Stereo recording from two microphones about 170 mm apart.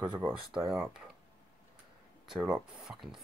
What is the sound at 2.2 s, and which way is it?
Speech, 5° right (ahead or behind).